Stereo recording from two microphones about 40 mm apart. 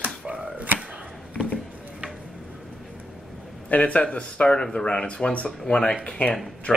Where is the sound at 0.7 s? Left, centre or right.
Right.